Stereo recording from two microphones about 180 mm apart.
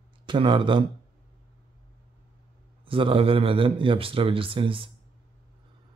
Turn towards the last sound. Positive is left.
turn(degrees=-30)  # may be behind; listen again after turning